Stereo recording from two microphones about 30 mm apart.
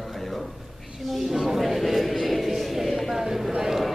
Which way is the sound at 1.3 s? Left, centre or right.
Centre.